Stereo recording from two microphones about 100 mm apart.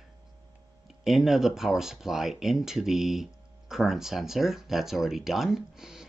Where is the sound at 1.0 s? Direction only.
5° right (ahead or behind).